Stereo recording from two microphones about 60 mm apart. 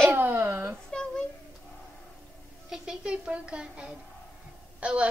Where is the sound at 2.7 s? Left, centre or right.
Centre.